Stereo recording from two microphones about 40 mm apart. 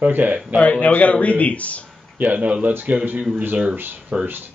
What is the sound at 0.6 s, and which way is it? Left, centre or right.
Speech, left.